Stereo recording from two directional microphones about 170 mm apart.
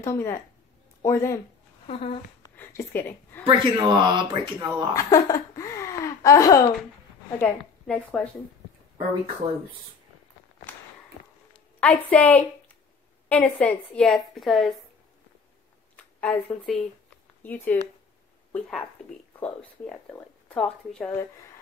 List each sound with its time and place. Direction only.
0.0 s a woman's voice: 15° left (ahead or behind)
2.5 s a sound: 15° left (ahead or behind)
3.4 s speech: 25° right (ahead or behind)
4.9 s speech: 20° left (ahead or behind)
7.3 s a woman's voice: 5° left (ahead or behind)
11.8 s a woman's voice: 10° left (ahead or behind)
16.0 s speech: 5° left (ahead or behind)